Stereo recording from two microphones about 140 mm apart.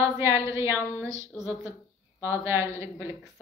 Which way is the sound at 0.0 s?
20° right (ahead or behind).